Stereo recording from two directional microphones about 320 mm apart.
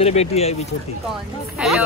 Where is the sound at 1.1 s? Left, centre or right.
Centre.